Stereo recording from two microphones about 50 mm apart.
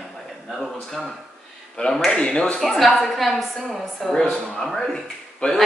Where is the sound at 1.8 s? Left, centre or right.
Centre.